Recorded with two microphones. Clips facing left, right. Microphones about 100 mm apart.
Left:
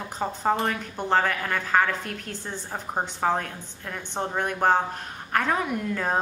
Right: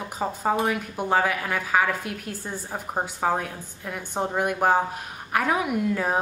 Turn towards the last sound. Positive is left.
turn(degrees=-10)  # may be behind; listen again after turning